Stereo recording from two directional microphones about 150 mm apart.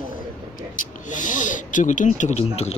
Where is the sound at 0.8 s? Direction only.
60° left (ahead or behind).